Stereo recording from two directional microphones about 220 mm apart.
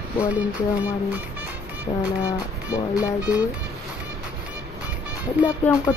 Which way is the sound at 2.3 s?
15° left (ahead or behind).